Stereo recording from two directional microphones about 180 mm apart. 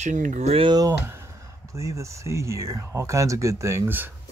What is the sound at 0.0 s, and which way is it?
Speech, 45° right (ahead or behind).